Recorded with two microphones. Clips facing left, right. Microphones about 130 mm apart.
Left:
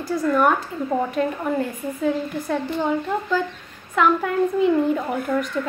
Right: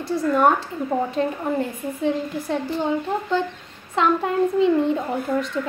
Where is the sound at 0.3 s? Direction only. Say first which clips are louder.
Right 1 dB; 25° right (ahead or behind).